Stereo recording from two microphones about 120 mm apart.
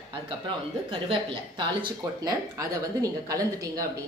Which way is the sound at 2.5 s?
30° right (ahead or behind).